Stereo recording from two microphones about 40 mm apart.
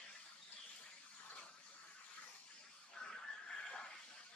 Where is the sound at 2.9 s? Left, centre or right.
Left.